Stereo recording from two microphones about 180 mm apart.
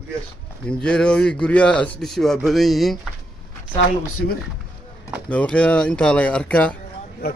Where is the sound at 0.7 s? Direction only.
5° left (ahead or behind).